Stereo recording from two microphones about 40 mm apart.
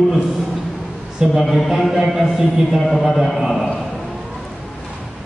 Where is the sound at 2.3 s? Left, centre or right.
Right.